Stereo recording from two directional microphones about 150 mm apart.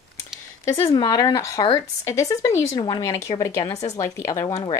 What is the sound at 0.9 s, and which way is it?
Speech, 25° left (ahead or behind).